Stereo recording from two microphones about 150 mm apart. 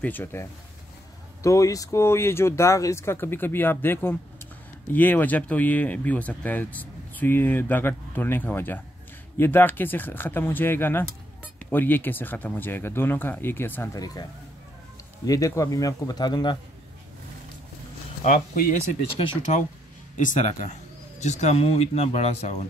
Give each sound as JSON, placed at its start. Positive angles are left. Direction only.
{"t": 0.0, "sound": "speech", "side_deg": 15}
{"t": 15.2, "sound": "speech", "side_deg": 25}
{"t": 18.2, "sound": "speech", "side_deg": 65}
{"t": 20.2, "sound": "speech", "side_deg": 55}